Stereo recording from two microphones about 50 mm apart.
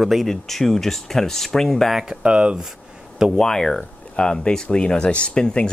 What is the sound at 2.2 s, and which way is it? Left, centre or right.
Speech, right.